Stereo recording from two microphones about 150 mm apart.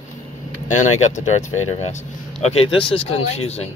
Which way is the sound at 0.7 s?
55° left (ahead or behind).